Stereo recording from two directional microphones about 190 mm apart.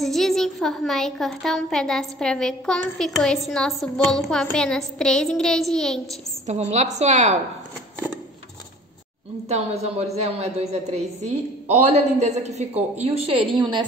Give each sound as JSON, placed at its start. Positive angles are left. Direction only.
{"t": 0.0, "sound": "a woman's voice", "side_deg": 0}
{"t": 6.4, "sound": "a woman's voice", "side_deg": -35}
{"t": 9.5, "sound": "a woman's voice", "side_deg": -35}